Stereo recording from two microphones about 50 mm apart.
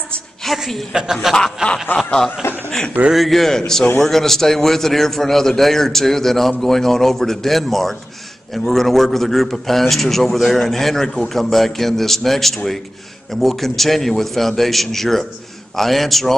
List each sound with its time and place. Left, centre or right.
0.5 s a woman's voice: centre
0.9 s a man's voice: centre
1.3 s snicker: centre
1.9 s snicker: left
2.4 s speech: left
3.1 s a man's voice: centre